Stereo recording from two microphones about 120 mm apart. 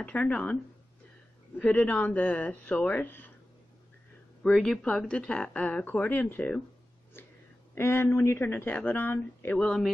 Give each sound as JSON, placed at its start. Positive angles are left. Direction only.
{"t": 0.0, "sound": "speech", "side_deg": 15}
{"t": 1.6, "sound": "speech", "side_deg": 10}
{"t": 4.4, "sound": "speech", "side_deg": 5}
{"t": 7.7, "sound": "speech", "side_deg": 20}